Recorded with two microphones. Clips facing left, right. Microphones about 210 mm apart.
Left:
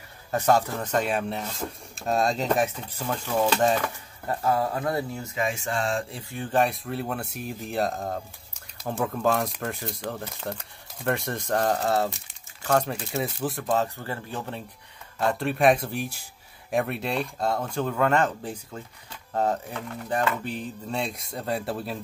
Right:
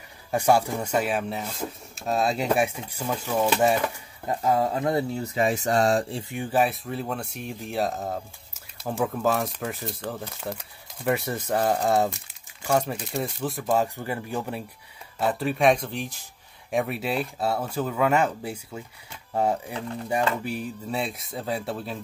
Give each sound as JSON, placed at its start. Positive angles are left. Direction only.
{"t": 0.3, "sound": "speech", "side_deg": -10}
{"t": 5.2, "sound": "speech", "side_deg": -35}
{"t": 6.3, "sound": "speech", "side_deg": -10}
{"t": 16.7, "sound": "speech", "side_deg": -5}